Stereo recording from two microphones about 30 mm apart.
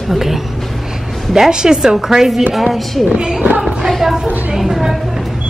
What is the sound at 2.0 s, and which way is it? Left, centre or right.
Speech, centre.